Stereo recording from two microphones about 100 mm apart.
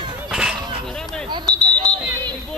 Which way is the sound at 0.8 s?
5° left (ahead or behind).